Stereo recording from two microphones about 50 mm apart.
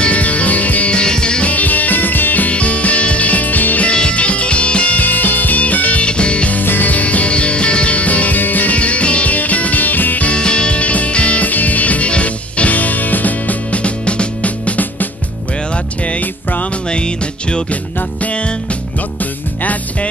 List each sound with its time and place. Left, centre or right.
0.0 s music: left
1.5 s music: left
2.5 s music: left
3.9 s music: left
6.6 s music: left
10.3 s music: centre
16.1 s music: left
16.9 s music: centre
19.6 s music: left